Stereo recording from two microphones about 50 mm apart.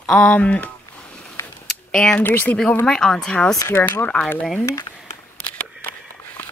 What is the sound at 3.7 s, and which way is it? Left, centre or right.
Speech, left.